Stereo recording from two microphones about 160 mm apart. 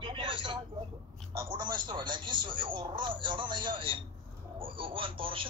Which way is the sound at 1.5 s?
30° right (ahead or behind).